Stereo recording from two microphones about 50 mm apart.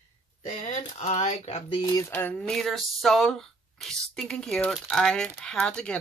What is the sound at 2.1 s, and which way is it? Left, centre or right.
Speech, left.